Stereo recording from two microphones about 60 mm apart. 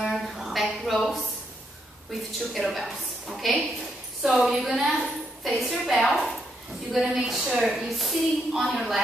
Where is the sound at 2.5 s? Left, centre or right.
Centre.